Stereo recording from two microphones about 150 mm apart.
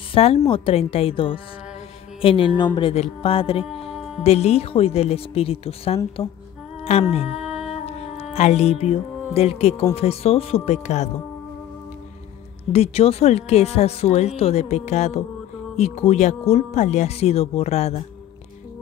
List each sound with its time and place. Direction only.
0.1 s speech: 40° left (ahead or behind)
2.9 s speech: 40° left (ahead or behind)
7.4 s music: 5° right (ahead or behind)
7.8 s speech: 45° left (ahead or behind)
12.7 s speech: 40° left (ahead or behind)